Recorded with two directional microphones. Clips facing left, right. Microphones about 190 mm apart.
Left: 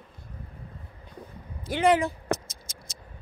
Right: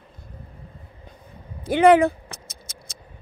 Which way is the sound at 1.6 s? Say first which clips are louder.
Right 8 dB; 60° right (ahead or behind).